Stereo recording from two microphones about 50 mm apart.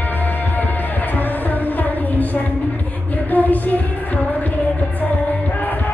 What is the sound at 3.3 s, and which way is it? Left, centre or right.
Music, left.